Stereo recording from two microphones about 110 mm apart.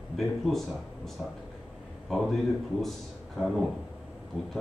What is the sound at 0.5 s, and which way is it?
Speech, centre (ahead or behind).